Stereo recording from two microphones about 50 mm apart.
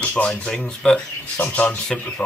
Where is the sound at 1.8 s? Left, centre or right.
Centre.